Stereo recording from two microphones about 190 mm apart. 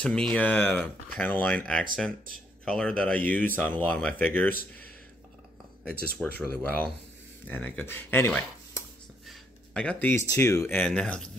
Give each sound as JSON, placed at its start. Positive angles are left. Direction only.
{"t": 0.0, "sound": "speech", "side_deg": 5}
{"t": 5.9, "sound": "speech", "side_deg": 5}
{"t": 9.2, "sound": "speech", "side_deg": 0}